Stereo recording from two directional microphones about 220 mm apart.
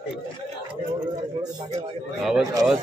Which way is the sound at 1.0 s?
20° right (ahead or behind).